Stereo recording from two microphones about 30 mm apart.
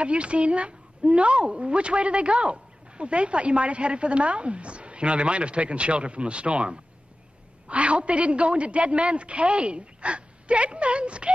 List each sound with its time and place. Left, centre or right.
0.0 s a woman's voice: right